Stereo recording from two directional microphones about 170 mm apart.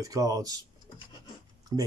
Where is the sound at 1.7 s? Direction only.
20° right (ahead or behind).